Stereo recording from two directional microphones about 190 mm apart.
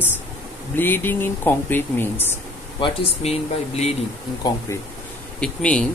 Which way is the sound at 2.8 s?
35° left (ahead or behind).